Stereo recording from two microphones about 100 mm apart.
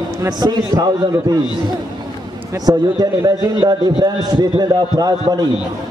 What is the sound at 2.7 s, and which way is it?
A man's voice, 40° right (ahead or behind).